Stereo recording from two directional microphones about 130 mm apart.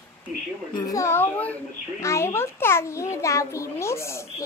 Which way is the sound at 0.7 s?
25° left (ahead or behind).